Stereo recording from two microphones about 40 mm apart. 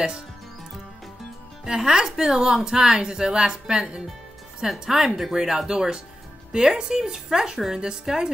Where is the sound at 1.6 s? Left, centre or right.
Centre.